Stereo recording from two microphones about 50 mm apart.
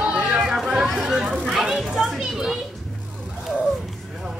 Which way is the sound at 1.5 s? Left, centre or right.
Centre.